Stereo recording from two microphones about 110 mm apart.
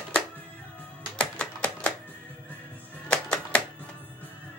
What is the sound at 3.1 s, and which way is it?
Music, 10° left (ahead or behind).